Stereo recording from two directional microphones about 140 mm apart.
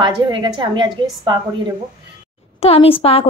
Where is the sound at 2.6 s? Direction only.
45° left (ahead or behind).